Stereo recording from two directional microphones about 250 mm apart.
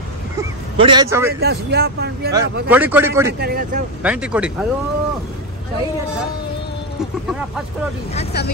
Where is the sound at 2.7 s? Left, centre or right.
Centre.